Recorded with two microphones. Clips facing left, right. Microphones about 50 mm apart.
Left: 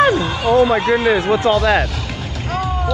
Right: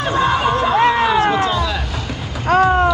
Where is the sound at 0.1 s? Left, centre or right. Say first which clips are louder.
Even; right.